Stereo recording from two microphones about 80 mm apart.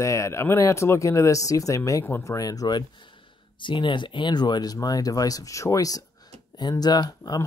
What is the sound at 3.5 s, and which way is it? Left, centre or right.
Speech, left.